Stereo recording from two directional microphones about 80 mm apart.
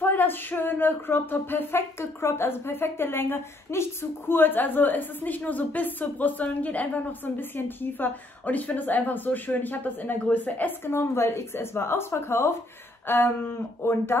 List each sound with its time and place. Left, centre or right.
0.0 s speech: left
10.9 s speech: left